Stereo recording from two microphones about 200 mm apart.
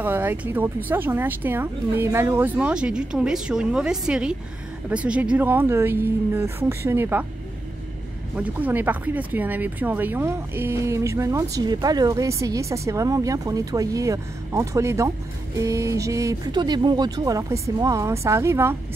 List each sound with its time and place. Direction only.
0.0 s speech: 10° right (ahead or behind)
8.4 s speech: 10° right (ahead or behind)